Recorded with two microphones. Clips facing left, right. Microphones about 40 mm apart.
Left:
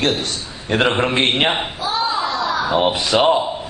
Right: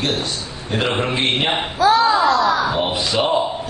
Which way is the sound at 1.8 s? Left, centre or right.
Right.